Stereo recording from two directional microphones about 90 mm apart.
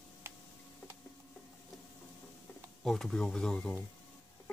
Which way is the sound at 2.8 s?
5° left (ahead or behind).